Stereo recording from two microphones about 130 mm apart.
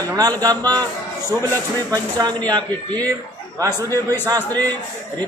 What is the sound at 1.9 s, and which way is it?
Speech, 30° right (ahead or behind).